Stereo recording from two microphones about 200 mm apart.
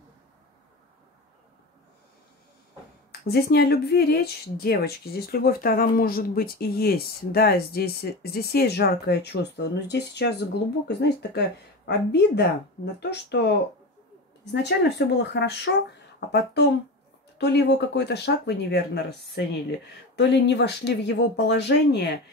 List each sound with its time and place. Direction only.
3.1 s speech: 50° left (ahead or behind)